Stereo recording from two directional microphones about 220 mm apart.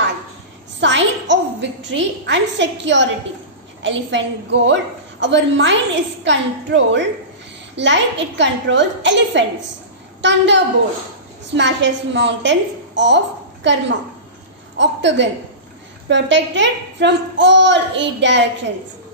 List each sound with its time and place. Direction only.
0.7 s a woman's voice: 55° right (ahead or behind)